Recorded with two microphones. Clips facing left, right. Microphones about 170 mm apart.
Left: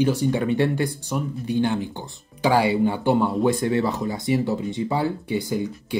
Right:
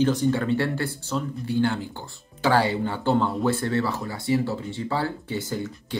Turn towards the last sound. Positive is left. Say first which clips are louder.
# left 4 dB
turn(degrees=10)  # may be behind; listen again after turning